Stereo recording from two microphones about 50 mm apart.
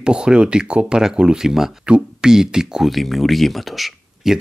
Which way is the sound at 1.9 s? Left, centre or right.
Right.